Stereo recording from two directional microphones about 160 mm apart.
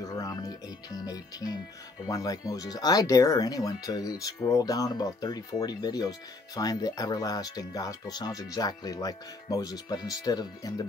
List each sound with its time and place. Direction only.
0.0 s speech: 25° left (ahead or behind)